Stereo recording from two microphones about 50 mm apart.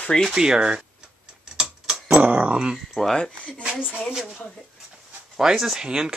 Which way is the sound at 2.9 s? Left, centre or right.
Centre.